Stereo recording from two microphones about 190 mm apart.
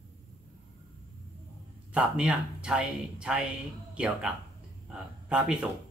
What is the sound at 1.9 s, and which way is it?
Speech, 5° right (ahead or behind).